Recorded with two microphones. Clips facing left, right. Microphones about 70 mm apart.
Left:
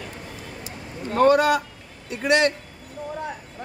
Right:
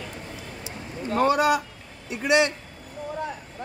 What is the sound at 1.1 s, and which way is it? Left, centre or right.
A man's voice, left.